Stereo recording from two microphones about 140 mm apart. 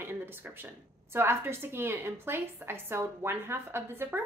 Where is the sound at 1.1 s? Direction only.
15° right (ahead or behind).